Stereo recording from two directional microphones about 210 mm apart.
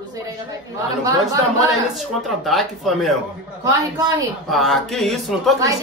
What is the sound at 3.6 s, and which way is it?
Speech, 15° right (ahead or behind).